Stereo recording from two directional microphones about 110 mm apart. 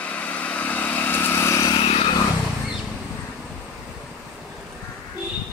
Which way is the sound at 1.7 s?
55° left (ahead or behind).